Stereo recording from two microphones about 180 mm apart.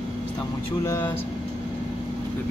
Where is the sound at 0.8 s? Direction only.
15° left (ahead or behind).